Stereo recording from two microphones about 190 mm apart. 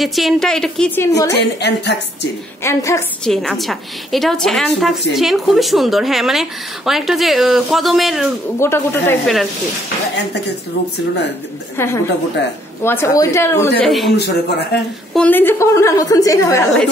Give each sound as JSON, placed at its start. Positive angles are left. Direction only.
{"t": 0.0, "sound": "a woman's voice", "side_deg": 0}
{"t": 1.3, "sound": "a man's voice", "side_deg": 65}
{"t": 2.6, "sound": "a woman's voice", "side_deg": 15}
{"t": 3.3, "sound": "a woman's voice", "side_deg": 0}
{"t": 8.5, "sound": "a woman's voice", "side_deg": 15}
{"t": 11.7, "sound": "a woman's voice", "side_deg": 15}
{"t": 13.8, "sound": "a woman's voice", "side_deg": 0}
{"t": 14.1, "sound": "a man's voice", "side_deg": 60}
{"t": 15.1, "sound": "a woman's voice", "side_deg": 10}